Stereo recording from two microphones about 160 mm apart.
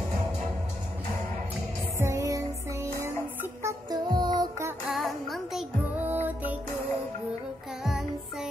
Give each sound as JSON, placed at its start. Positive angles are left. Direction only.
{"t": 2.0, "sound": "music", "side_deg": -20}
{"t": 4.8, "sound": "music", "side_deg": 0}
{"t": 7.8, "sound": "music", "side_deg": 0}